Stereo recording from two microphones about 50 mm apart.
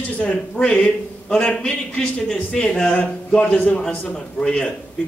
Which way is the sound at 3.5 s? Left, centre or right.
Left.